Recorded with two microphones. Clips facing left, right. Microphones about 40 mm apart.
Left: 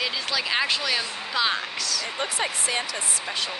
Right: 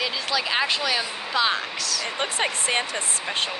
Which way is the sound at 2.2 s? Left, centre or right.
Right.